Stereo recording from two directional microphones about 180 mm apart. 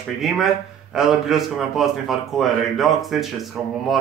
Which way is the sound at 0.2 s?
Centre (ahead or behind).